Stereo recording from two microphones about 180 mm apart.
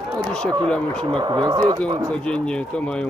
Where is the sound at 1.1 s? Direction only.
25° right (ahead or behind).